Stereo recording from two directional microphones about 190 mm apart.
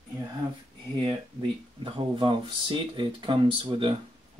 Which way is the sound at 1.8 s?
25° right (ahead or behind).